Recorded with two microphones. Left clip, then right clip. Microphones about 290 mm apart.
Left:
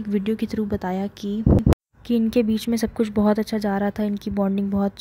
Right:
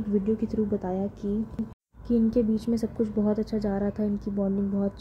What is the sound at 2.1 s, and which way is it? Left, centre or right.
Speech, left.